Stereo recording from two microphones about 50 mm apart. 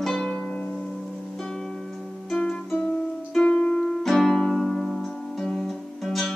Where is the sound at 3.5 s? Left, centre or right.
Left.